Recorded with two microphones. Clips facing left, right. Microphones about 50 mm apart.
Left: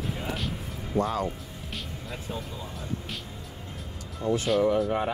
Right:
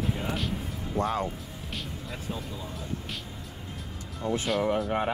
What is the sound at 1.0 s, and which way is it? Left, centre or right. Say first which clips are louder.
Speech: left 2 dB; right.